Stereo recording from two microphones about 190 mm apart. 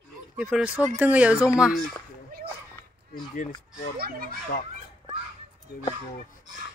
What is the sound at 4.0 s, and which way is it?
Speech, 50° right (ahead or behind).